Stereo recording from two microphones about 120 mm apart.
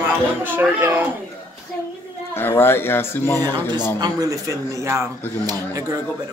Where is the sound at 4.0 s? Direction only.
35° right (ahead or behind).